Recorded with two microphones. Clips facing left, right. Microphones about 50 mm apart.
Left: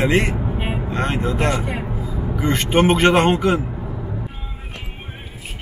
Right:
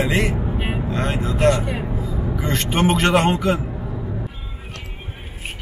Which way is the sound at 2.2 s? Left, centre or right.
Centre.